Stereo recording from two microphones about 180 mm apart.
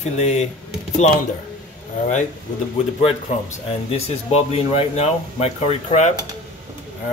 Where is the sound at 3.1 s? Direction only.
35° left (ahead or behind).